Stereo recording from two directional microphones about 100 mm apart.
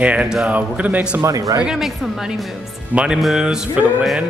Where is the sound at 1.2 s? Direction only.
35° right (ahead or behind).